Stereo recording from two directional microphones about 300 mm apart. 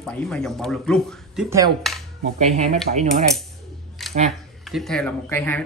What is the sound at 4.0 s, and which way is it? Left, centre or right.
Camera, centre.